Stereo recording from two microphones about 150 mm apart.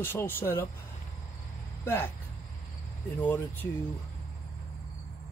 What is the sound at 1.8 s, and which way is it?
Speech, 15° left (ahead or behind).